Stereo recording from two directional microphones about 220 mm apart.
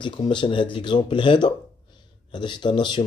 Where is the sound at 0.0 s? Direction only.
20° left (ahead or behind).